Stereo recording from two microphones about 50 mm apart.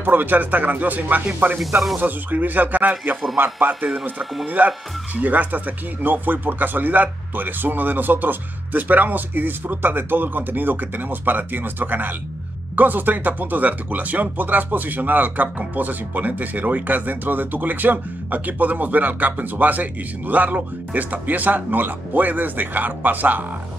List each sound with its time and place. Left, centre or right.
0.0 s speech: right
4.2 s speech: centre
4.5 s speech: right